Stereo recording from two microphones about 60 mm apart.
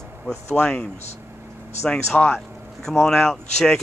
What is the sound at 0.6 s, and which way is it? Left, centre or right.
Speech, left.